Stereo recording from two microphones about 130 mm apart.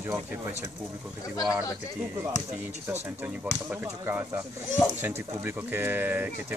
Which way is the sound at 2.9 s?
15° right (ahead or behind).